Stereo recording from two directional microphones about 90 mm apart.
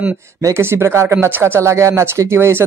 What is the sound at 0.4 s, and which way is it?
Speech, 30° right (ahead or behind).